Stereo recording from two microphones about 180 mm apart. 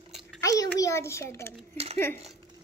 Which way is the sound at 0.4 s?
20° left (ahead or behind).